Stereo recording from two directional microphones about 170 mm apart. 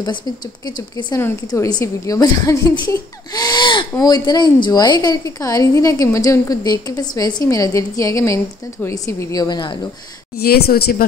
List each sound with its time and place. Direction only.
1.1 s a woman's voice: 20° left (ahead or behind)
10.3 s a woman's voice: 65° left (ahead or behind)